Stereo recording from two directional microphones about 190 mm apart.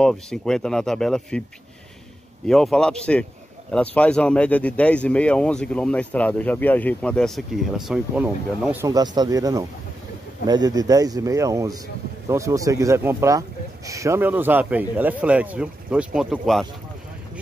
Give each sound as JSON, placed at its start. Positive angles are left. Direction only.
{"t": 0.0, "sound": "speech", "side_deg": 5}
{"t": 2.4, "sound": "speech", "side_deg": 0}
{"t": 8.9, "sound": "a man's voice", "side_deg": -20}